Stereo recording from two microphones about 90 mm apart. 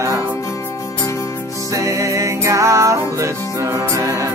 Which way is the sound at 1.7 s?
35° right (ahead or behind).